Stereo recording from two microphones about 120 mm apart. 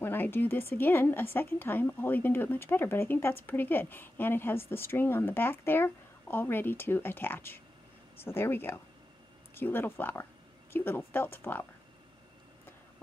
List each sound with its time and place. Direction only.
0.0 s a woman's voice: 20° left (ahead or behind)